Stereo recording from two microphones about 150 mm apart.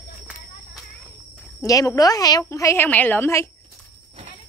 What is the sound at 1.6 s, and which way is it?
Speech, 20° left (ahead or behind).